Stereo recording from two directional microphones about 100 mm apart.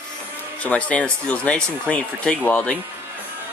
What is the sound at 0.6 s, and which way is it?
Speech, 15° left (ahead or behind).